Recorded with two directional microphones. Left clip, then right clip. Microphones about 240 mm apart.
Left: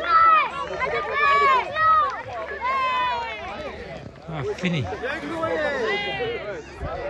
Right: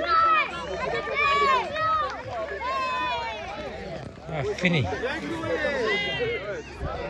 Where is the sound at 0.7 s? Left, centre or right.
Right.